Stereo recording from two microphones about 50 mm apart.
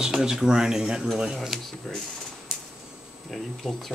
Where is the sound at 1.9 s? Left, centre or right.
Centre.